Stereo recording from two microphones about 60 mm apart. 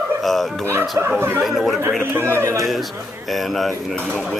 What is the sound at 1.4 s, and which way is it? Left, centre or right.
Speech, centre.